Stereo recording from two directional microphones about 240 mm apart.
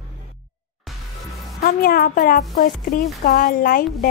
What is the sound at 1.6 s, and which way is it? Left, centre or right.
A woman's voice, left.